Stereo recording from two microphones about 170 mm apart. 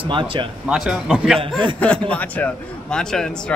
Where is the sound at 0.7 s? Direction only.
5° right (ahead or behind).